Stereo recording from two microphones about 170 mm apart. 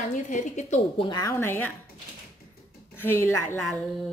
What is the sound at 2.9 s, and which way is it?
Speech, 15° left (ahead or behind).